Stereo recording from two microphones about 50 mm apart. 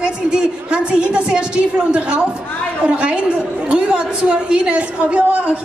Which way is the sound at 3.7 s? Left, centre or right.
Centre.